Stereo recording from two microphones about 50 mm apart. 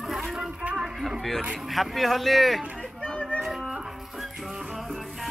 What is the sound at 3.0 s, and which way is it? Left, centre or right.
Music, left.